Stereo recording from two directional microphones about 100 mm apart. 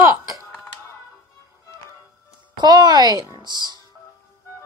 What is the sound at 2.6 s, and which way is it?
Speech, 45° right (ahead or behind).